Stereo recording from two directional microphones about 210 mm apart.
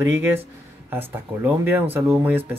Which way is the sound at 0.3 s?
10° right (ahead or behind).